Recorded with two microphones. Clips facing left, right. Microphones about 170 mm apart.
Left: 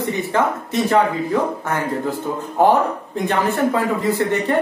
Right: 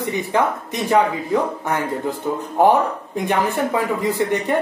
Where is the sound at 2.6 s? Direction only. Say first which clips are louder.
Even; 15° right (ahead or behind).